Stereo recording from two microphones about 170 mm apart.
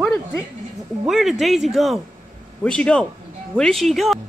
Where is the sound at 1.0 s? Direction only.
Centre (ahead or behind).